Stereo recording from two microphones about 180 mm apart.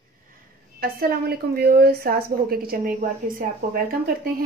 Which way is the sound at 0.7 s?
55° right (ahead or behind).